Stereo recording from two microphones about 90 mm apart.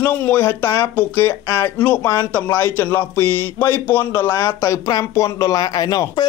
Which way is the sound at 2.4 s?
25° left (ahead or behind).